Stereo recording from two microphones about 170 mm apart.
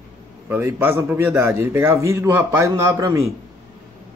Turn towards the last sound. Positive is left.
turn(degrees=-20)  # may be behind; listen again after turning